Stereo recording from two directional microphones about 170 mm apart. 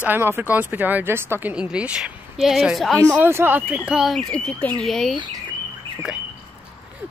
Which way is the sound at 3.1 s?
15° right (ahead or behind).